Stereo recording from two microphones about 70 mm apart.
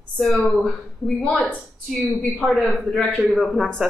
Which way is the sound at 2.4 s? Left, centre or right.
Centre.